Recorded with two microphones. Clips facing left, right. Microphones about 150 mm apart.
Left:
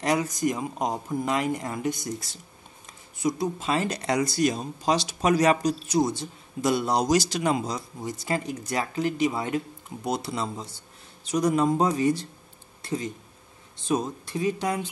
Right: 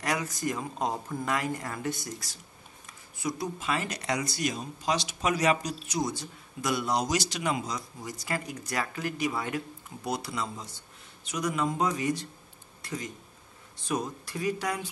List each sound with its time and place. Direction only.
0.0 s speech: 25° left (ahead or behind)